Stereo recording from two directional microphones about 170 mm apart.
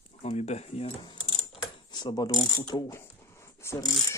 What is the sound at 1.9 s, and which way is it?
Speech, 25° left (ahead or behind).